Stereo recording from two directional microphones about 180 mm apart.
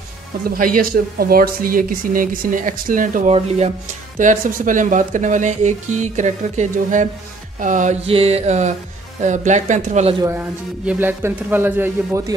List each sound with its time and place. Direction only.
0.6 s speech: 50° right (ahead or behind)
3.3 s mantra: 35° right (ahead or behind)
4.2 s speech: 45° right (ahead or behind)
7.6 s mantra: 45° right (ahead or behind)
10.9 s a man's voice: 10° right (ahead or behind)